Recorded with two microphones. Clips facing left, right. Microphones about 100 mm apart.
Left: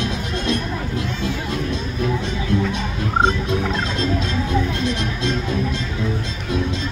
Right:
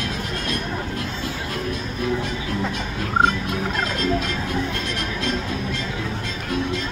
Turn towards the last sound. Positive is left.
turn(degrees=20)  # may be behind; listen again after turning